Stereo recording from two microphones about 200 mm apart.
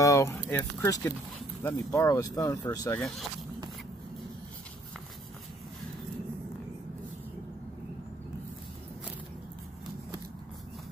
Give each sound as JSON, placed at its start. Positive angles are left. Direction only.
{"t": 0.0, "sound": "speech", "side_deg": 15}
{"t": 3.0, "sound": "speech", "side_deg": 0}